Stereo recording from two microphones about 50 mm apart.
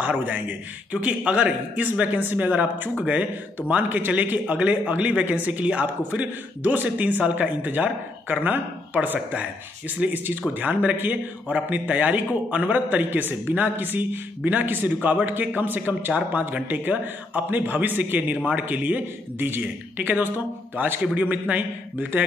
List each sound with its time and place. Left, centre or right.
0.0 s a man's voice: right
1.9 s a man's voice: right